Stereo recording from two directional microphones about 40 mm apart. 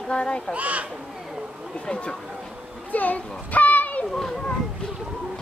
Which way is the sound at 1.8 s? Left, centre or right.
Left.